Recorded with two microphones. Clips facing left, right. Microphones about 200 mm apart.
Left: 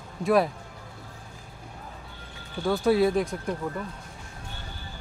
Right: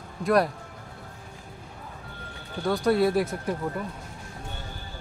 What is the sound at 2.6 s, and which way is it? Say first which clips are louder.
Speech: left 1 dB; centre (ahead or behind).